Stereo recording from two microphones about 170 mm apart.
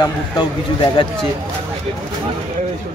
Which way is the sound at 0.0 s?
30° left (ahead or behind).